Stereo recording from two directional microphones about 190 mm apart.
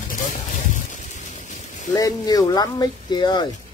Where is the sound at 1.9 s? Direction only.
20° left (ahead or behind).